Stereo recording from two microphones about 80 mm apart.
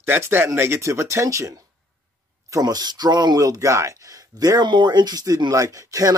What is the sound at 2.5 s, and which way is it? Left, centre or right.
Speech, right.